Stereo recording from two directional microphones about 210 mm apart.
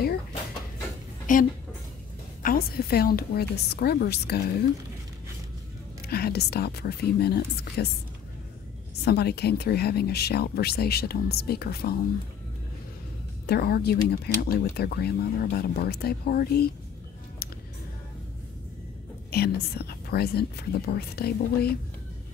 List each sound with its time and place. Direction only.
1.3 s speech: 40° left (ahead or behind)
6.0 s speech: 50° left (ahead or behind)
9.0 s speech: 50° left (ahead or behind)
13.5 s speech: 50° left (ahead or behind)
19.3 s speech: 50° left (ahead or behind)